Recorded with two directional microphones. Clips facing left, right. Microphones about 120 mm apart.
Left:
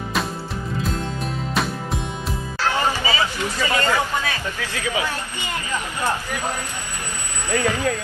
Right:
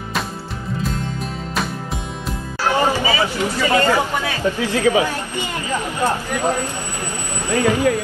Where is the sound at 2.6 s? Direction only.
15° right (ahead or behind).